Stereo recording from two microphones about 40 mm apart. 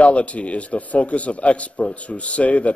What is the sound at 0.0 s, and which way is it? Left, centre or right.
A man's voice, left.